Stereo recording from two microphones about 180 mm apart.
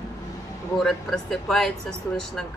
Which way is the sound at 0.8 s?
Centre (ahead or behind).